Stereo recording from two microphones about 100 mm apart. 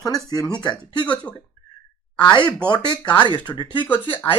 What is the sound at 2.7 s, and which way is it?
Speech, 45° left (ahead or behind).